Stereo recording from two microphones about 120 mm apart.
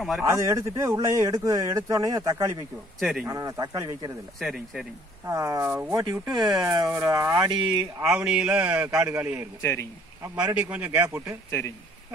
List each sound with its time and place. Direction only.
0.2 s speech: 25° right (ahead or behind)
3.0 s speech: centre (ahead or behind)
3.3 s speech: 30° right (ahead or behind)
4.4 s speech: centre (ahead or behind)
5.2 s speech: 25° right (ahead or behind)
6.3 s speech: 40° right (ahead or behind)
7.4 s speech: 40° right (ahead or behind)
8.0 s a man's voice: 5° right (ahead or behind)
8.5 s speech: 25° right (ahead or behind)
9.6 s a man's voice: 25° left (ahead or behind)
10.5 s a man's voice: 10° right (ahead or behind)